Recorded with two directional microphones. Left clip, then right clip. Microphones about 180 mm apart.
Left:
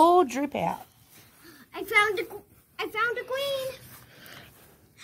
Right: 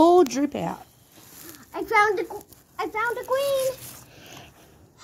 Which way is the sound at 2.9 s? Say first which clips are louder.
Right 3 dB; 35° left (ahead or behind).